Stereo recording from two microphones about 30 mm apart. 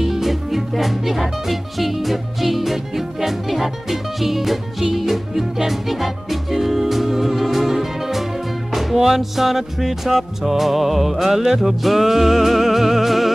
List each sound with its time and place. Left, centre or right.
0.0 s speech: centre
5.7 s music: centre